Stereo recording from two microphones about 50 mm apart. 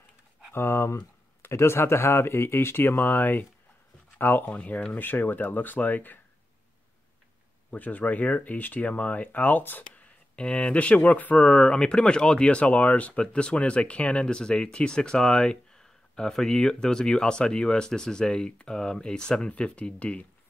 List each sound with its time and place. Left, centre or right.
0.5 s speech: left
4.5 s speech: left
7.7 s speech: left
10.3 s speech: centre